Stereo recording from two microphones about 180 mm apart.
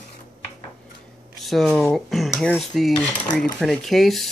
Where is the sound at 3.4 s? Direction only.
Centre (ahead or behind).